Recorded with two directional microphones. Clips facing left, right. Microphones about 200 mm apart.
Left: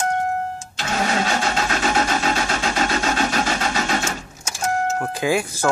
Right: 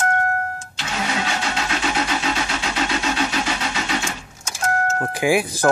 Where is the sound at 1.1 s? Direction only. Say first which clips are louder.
Left 2 dB; 45° left (ahead or behind).